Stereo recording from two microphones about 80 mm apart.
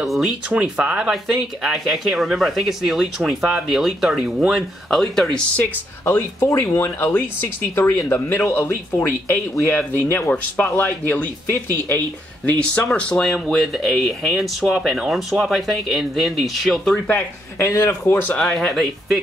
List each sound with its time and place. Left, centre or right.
0.0 s speech: centre
0.5 s speech: centre
5.0 s speech: centre
5.6 s speech: left
12.4 s speech: centre
17.6 s speech: left
18.4 s speech: centre